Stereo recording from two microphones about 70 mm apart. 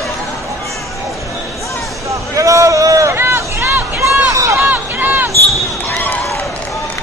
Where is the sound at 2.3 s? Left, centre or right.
Right.